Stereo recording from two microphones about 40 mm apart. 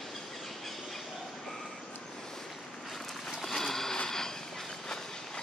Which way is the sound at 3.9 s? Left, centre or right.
Centre.